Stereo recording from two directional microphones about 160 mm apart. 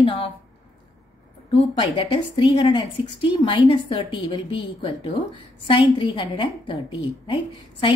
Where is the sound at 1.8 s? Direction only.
35° left (ahead or behind).